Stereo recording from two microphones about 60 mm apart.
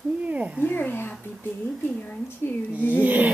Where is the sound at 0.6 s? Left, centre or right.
Left.